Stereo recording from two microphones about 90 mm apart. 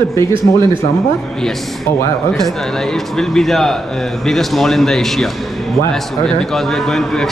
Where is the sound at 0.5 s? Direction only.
30° left (ahead or behind).